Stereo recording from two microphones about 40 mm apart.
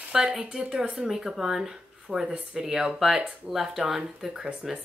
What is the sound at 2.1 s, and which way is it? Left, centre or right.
Speech, right.